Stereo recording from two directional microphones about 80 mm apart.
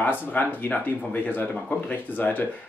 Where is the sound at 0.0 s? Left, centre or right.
Left.